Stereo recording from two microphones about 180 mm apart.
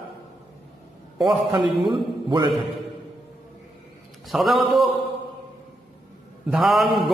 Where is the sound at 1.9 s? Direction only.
25° right (ahead or behind).